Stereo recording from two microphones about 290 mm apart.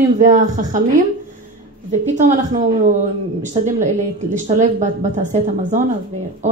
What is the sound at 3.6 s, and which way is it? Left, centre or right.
Speech, right.